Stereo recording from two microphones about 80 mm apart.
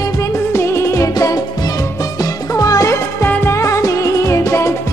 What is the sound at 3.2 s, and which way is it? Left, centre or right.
Music, left.